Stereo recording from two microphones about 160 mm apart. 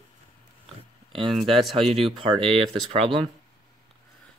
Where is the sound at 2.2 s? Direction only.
35° right (ahead or behind).